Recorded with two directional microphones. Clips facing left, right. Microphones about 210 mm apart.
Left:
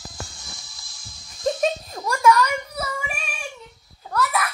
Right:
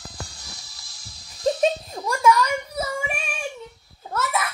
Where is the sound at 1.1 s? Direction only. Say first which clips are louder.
Right 1 dB; 35° right (ahead or behind).